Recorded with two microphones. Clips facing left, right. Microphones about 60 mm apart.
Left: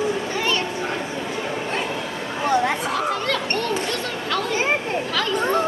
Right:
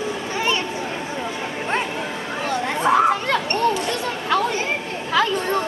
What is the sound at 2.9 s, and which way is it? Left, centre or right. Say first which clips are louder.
Chatter: right 6 dB; right.